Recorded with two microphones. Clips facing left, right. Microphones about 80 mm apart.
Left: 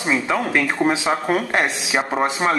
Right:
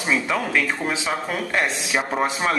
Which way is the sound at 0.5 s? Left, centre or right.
Left.